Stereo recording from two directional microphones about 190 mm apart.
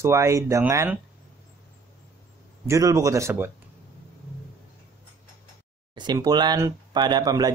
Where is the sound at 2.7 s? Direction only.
15° right (ahead or behind).